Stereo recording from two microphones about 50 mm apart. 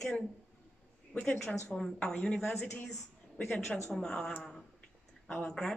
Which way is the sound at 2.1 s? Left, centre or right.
Centre.